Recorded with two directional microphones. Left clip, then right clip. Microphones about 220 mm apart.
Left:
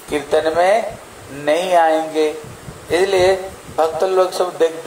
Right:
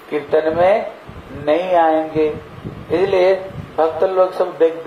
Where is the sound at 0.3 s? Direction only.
30° left (ahead or behind).